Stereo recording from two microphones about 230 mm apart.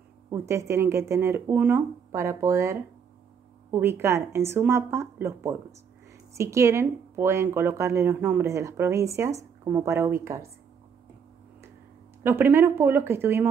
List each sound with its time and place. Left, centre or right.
0.3 s speech: centre
12.2 s speech: centre